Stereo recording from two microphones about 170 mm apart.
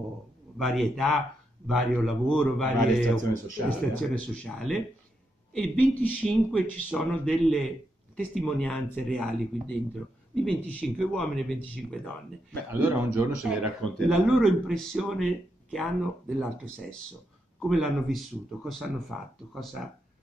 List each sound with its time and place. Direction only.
0.6 s speech: centre (ahead or behind)
12.7 s a man's voice: 15° right (ahead or behind)
13.4 s speech: centre (ahead or behind)
17.6 s speech: centre (ahead or behind)